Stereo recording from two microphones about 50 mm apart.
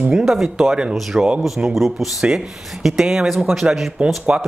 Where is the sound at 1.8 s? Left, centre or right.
Centre.